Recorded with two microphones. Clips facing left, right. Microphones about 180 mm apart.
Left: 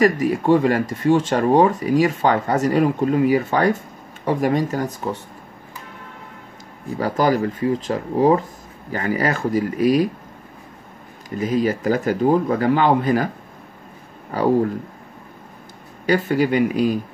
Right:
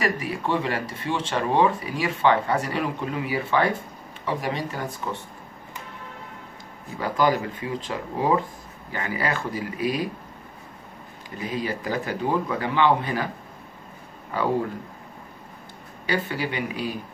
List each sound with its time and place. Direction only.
0.0 s speech: 45° left (ahead or behind)
7.0 s speech: 40° left (ahead or behind)
11.2 s speech: 40° left (ahead or behind)
14.3 s speech: 40° left (ahead or behind)
16.1 s speech: 45° left (ahead or behind)